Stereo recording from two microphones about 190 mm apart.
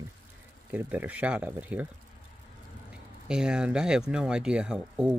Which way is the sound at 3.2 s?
5° right (ahead or behind).